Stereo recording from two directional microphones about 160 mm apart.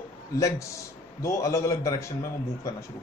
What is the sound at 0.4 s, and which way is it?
A man's voice, 20° left (ahead or behind).